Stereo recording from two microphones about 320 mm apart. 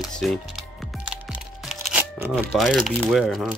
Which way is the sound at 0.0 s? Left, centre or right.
Centre.